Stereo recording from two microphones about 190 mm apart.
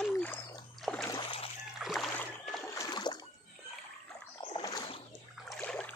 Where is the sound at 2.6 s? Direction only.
20° left (ahead or behind).